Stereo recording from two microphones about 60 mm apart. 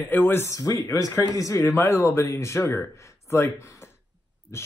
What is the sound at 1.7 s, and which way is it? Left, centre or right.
Speech, left.